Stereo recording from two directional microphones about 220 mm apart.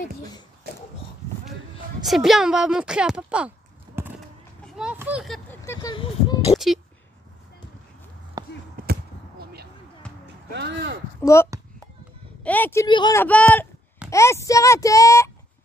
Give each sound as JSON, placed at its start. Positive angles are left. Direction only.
{"t": 2.0, "sound": "speech", "side_deg": 0}
{"t": 4.7, "sound": "a sound", "side_deg": -5}
{"t": 5.7, "sound": "speech", "side_deg": 15}
{"t": 6.5, "sound": "a sound", "side_deg": 30}
{"t": 8.4, "sound": "basketball bounce", "side_deg": -15}
{"t": 8.8, "sound": "basketball bounce", "side_deg": -40}
{"t": 10.2, "sound": "a sound", "side_deg": -50}
{"t": 11.1, "sound": "a child's voice", "side_deg": 10}
{"t": 12.4, "sound": "speech", "side_deg": 10}
{"t": 12.8, "sound": "speech", "side_deg": 20}
{"t": 13.2, "sound": "speech", "side_deg": 10}